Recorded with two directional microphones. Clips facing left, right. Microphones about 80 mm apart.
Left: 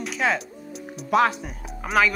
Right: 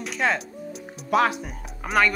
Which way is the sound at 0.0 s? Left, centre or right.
Centre.